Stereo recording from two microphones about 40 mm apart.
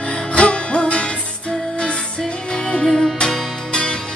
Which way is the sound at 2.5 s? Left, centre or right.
Centre.